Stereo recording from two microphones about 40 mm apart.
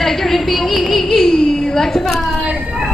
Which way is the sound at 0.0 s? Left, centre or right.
Centre.